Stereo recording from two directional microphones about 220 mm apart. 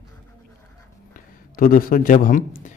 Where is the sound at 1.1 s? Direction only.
40° left (ahead or behind).